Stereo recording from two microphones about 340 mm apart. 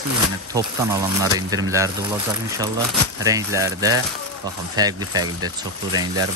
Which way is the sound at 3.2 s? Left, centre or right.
Centre.